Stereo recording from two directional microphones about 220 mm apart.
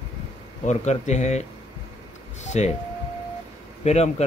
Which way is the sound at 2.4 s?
30° left (ahead or behind).